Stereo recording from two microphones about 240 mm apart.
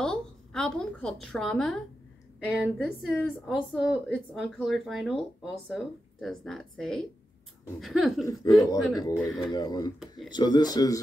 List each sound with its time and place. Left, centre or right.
0.0 s a woman's voice: centre
8.6 s speech: centre
9.9 s a woman's voice: centre
10.3 s speech: centre